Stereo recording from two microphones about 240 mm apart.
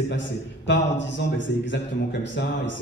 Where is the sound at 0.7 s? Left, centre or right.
Left.